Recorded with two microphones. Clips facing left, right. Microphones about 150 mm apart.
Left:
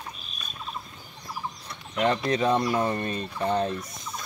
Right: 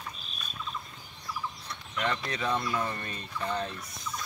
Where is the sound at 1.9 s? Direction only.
35° left (ahead or behind).